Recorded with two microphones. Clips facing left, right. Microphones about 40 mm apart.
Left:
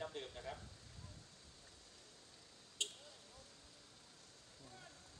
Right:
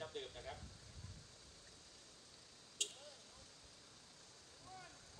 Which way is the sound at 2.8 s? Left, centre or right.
Left.